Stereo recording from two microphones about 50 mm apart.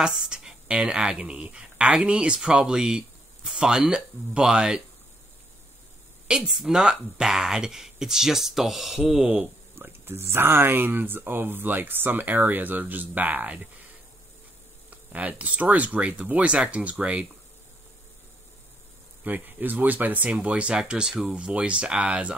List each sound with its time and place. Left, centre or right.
0.0 s a sound: centre
0.7 s speech: centre
6.2 s speech: centre
9.8 s speech: right
14.9 s speech: right
19.2 s speech: right
20.2 s speech: right